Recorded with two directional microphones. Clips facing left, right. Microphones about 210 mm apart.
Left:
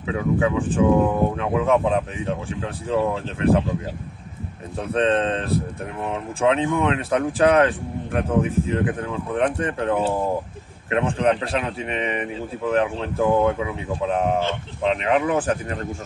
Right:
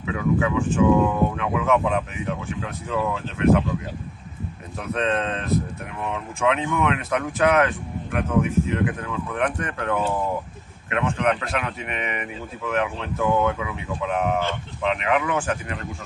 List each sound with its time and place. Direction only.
0.0 s speech: 30° left (ahead or behind)
4.7 s speech: 30° left (ahead or behind)